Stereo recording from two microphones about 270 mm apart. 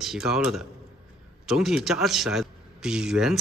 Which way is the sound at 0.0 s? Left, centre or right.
Centre.